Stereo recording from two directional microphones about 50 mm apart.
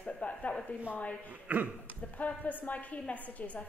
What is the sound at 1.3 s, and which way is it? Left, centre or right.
Speech, right.